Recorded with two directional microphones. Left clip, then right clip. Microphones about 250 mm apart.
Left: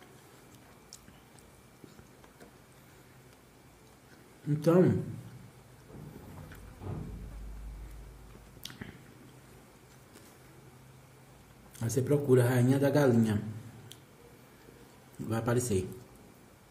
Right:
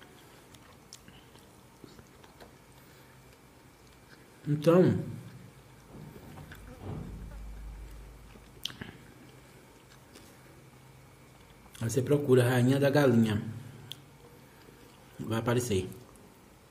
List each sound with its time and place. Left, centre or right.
4.6 s a man's voice: centre
8.6 s biting: centre
11.8 s a man's voice: centre
15.2 s a man's voice: centre